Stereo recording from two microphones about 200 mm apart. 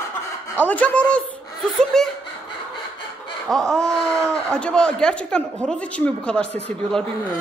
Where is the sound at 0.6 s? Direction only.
10° left (ahead or behind).